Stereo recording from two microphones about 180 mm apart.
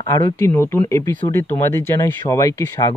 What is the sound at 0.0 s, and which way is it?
Speech, 20° left (ahead or behind).